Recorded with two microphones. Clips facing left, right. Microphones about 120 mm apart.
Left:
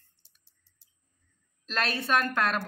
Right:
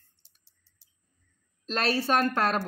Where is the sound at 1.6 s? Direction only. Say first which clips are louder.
Right 4 dB; 35° right (ahead or behind).